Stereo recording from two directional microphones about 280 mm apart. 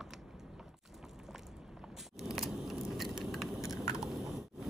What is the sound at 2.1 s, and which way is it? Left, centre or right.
Vehicle, centre.